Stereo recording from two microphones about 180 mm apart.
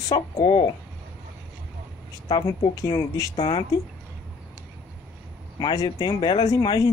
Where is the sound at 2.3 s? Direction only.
25° left (ahead or behind).